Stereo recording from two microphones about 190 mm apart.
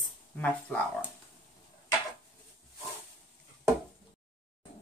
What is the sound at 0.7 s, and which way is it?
Speech, 5° left (ahead or behind).